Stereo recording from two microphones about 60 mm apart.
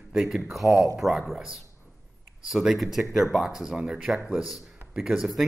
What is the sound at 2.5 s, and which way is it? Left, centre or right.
Speech, centre.